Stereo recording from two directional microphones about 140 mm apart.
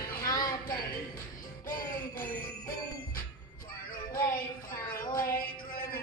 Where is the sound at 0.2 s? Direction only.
25° left (ahead or behind).